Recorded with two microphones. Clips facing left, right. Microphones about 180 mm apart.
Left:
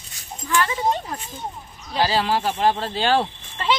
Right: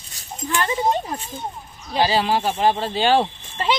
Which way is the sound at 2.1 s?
5° right (ahead or behind).